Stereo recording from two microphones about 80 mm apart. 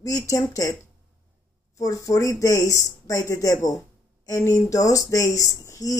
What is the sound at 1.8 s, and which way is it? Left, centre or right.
Speech, left.